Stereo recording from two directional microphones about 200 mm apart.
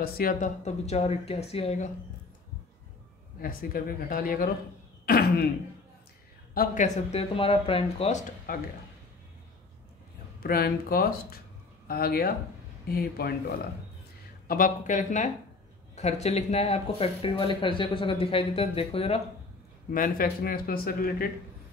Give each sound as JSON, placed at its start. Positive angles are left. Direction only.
{"t": 0.0, "sound": "speech", "side_deg": 45}
{"t": 3.3, "sound": "speech", "side_deg": 45}
{"t": 6.5, "sound": "speech", "side_deg": 45}
{"t": 10.4, "sound": "speech", "side_deg": 50}
{"t": 14.5, "sound": "speech", "side_deg": 40}
{"t": 19.9, "sound": "speech", "side_deg": 45}